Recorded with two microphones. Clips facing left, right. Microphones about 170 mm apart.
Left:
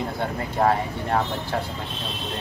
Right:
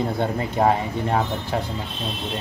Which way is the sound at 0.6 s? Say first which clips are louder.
Right 1 dB; 20° right (ahead or behind).